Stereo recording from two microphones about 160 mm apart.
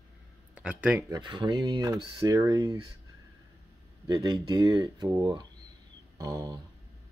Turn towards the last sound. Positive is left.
turn(degrees=-20)  # may be behind; listen again after turning